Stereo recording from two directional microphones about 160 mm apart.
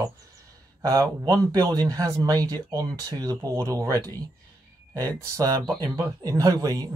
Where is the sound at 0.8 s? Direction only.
20° right (ahead or behind).